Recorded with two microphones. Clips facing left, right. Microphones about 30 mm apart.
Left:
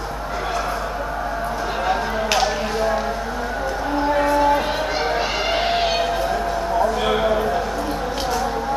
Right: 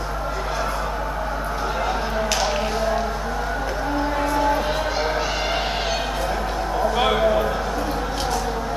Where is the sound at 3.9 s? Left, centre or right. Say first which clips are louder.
Left 5 dB; centre.